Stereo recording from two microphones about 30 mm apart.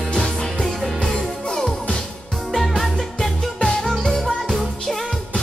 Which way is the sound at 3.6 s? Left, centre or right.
Centre.